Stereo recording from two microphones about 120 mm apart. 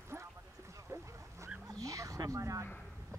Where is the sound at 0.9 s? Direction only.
25° right (ahead or behind).